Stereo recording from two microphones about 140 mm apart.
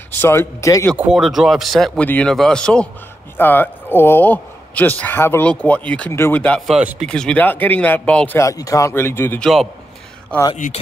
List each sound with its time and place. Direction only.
0.2 s speech: 20° left (ahead or behind)
0.9 s a man's voice: 5° right (ahead or behind); by 6.6 s 10° left (ahead or behind)
6.7 s speech: 5° right (ahead or behind)
7.1 s speech: 5° left (ahead or behind)
8.4 s speech: 25° left (ahead or behind)
9.4 s speech: centre (ahead or behind)